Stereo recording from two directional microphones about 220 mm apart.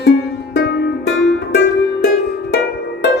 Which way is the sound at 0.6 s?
50° left (ahead or behind).